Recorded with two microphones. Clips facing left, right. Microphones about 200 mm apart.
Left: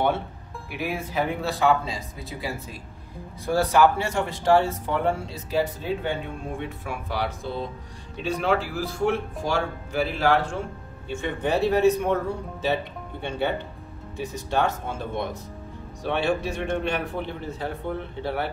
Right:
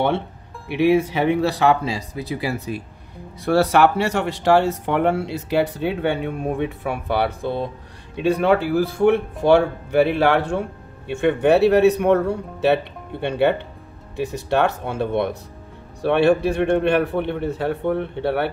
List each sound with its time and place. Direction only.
0.7 s speech: 75° right (ahead or behind)